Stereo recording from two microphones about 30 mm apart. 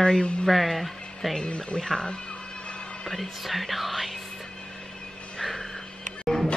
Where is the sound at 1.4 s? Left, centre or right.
Left.